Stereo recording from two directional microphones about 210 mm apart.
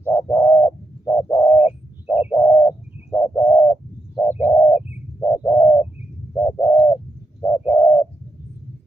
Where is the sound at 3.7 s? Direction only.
5° left (ahead or behind).